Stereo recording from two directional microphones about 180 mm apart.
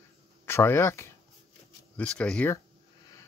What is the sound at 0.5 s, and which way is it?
Speech, 15° left (ahead or behind).